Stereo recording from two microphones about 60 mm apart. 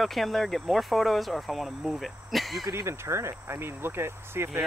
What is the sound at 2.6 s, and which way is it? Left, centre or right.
Speech, right.